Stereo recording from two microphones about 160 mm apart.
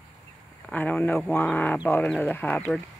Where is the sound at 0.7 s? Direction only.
10° left (ahead or behind).